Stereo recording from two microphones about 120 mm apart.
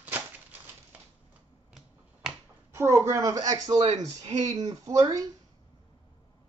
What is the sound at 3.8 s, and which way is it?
Speech, 65° right (ahead or behind).